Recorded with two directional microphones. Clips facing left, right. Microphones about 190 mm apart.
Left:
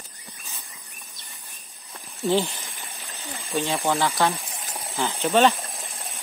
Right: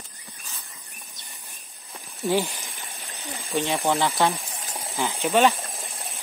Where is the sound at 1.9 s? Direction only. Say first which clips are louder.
Left 1 dB; 15° right (ahead or behind).